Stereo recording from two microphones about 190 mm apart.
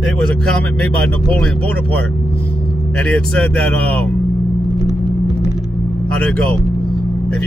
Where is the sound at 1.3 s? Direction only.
5° left (ahead or behind).